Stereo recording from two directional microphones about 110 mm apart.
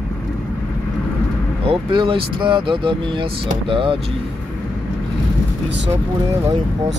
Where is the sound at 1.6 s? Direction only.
50° right (ahead or behind).